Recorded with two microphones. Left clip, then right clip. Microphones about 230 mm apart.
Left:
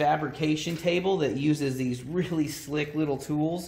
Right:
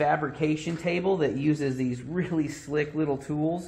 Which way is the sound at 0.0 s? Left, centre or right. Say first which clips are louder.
Even; left.